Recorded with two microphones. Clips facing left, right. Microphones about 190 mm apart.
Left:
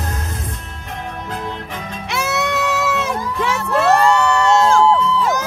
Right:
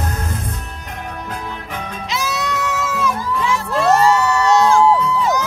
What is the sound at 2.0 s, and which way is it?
Crowd, 65° left (ahead or behind).